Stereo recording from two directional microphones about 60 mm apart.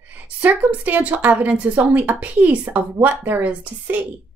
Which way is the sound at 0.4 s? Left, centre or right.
Right.